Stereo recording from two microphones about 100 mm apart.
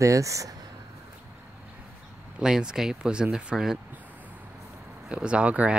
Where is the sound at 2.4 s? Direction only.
5° right (ahead or behind).